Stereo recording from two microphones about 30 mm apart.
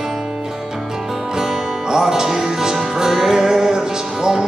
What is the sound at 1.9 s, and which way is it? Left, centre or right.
Music, centre.